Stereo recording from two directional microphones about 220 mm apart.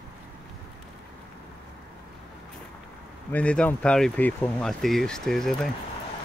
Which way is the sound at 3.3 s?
5° left (ahead or behind).